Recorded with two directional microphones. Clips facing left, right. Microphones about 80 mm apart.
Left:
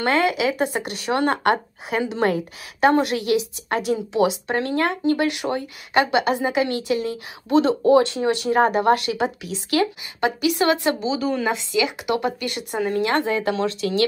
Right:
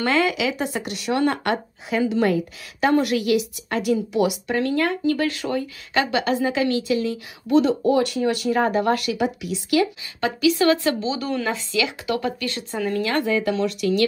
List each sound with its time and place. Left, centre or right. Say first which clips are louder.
0.0 s speech: left 1 dB; left
1.9 s a woman's voice: right 2 dB; left
2.8 s speech: left 1 dB; left
9.4 s speech: right 1 dB; left
10.2 s speech: right 1 dB; centre
11.1 s speech: left 2 dB; centre; by 14.0 s left